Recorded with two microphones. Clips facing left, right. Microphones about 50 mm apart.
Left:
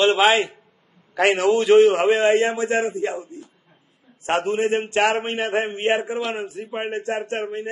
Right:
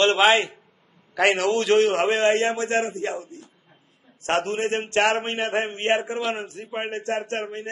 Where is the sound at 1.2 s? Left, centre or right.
Left.